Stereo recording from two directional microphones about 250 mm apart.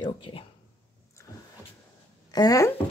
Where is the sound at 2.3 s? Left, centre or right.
Centre.